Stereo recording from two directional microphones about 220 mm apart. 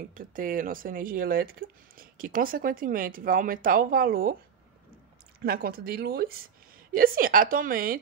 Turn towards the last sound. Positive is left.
turn(degrees=-40)  # may be behind; listen again after turning